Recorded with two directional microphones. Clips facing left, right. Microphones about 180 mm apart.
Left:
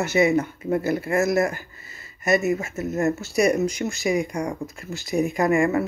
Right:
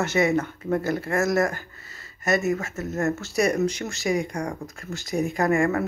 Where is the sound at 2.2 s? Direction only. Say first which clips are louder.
Left 2 dB; 10° left (ahead or behind).